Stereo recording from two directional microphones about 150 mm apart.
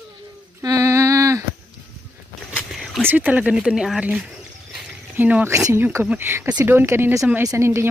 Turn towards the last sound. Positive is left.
turn(degrees=-20)  # may be behind; listen again after turning